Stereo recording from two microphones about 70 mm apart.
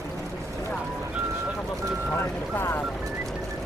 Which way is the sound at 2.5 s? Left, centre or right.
Left.